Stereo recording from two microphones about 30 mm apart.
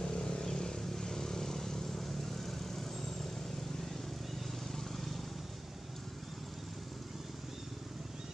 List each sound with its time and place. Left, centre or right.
0.0 s vehicle: left
4.7 s vehicle: centre